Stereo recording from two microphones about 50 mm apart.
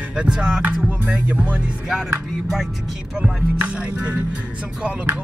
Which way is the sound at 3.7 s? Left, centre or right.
Right.